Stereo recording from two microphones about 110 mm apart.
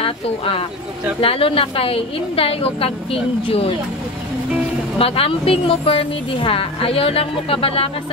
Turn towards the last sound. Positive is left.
turn(degrees=60)  # may be behind; listen again after turning